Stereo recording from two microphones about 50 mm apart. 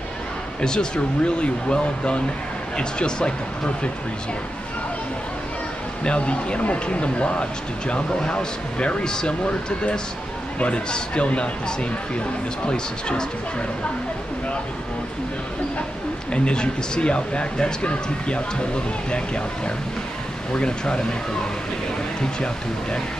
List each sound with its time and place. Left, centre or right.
0.6 s speech: centre
6.0 s speech: left
12.6 s speech: centre
16.3 s speech: centre
22.2 s speech: centre